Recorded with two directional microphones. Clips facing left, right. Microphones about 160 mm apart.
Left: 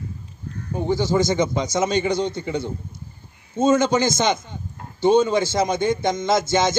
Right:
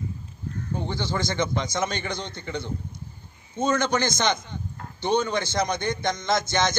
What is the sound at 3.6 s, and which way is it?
A man's voice, 25° left (ahead or behind).